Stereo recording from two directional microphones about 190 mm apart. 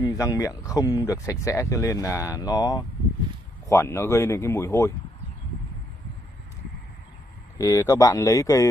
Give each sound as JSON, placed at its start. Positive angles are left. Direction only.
{"t": 0.0, "sound": "speech", "side_deg": 15}
{"t": 7.5, "sound": "speech", "side_deg": 15}